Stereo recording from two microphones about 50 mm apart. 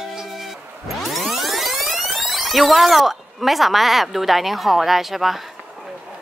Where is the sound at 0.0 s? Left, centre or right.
Centre.